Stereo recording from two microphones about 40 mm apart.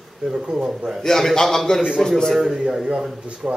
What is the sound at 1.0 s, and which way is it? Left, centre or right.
Speech, centre.